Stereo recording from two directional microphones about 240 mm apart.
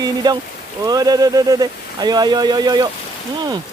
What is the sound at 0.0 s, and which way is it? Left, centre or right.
Speech, centre.